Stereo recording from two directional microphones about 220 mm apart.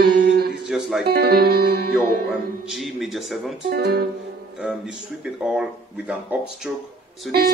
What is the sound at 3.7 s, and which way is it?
Music, 45° right (ahead or behind).